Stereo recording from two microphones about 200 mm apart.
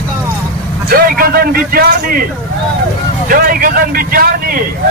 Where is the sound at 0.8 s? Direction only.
45° right (ahead or behind).